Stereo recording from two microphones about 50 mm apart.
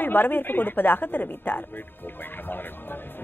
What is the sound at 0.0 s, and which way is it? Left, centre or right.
Speech, left.